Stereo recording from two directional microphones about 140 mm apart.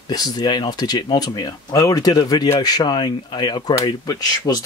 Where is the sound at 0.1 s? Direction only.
30° left (ahead or behind).